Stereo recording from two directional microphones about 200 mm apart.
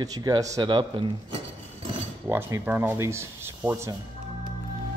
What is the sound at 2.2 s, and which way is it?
Speech, 10° right (ahead or behind).